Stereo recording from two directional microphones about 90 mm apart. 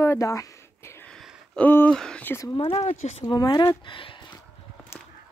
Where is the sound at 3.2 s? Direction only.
50° left (ahead or behind).